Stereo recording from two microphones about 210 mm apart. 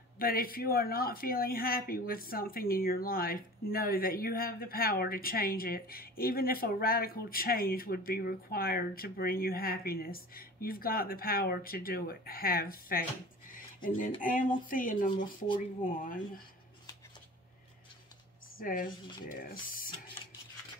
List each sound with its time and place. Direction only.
0.2 s speech: 45° left (ahead or behind)
13.5 s a sound: 40° left (ahead or behind)
14.2 s speech: 40° left (ahead or behind)
18.6 s speech: 40° left (ahead or behind)